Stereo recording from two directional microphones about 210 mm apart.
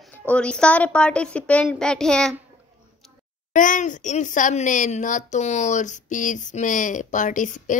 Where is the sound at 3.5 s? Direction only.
40° left (ahead or behind).